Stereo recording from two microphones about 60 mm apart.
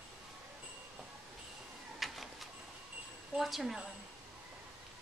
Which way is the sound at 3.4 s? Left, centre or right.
Centre.